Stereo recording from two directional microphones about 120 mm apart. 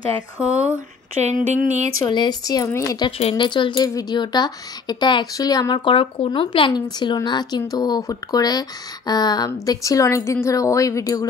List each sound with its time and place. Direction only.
1.2 s a sound: 75° right (ahead or behind)
2.0 s a woman's voice: 35° left (ahead or behind)
3.2 s speech: 60° left (ahead or behind)
3.4 s a woman's voice: 40° left (ahead or behind)